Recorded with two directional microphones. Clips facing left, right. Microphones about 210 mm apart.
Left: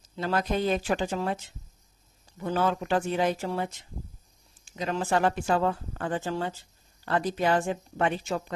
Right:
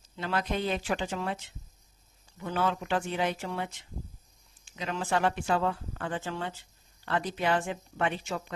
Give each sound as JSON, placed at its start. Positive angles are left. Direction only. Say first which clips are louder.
{"t": 0.1, "sound": "speech", "louder": "left 4 dB", "side_deg": 40}